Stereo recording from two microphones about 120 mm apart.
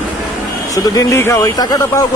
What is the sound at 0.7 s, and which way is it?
Speech, 30° left (ahead or behind).